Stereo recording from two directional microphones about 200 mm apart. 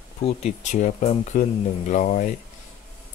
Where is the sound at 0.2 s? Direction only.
35° left (ahead or behind).